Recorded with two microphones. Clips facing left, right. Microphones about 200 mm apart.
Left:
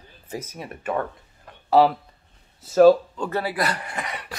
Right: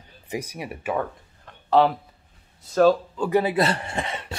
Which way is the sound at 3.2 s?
15° right (ahead or behind).